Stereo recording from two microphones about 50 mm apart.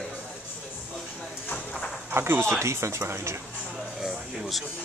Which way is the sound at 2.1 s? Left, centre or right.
Right.